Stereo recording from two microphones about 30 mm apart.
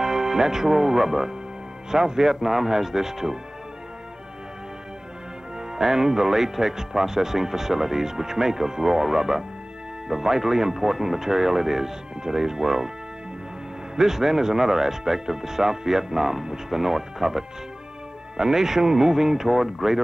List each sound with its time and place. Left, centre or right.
0.0 s speech: centre
5.8 s speech: centre
13.9 s speech: centre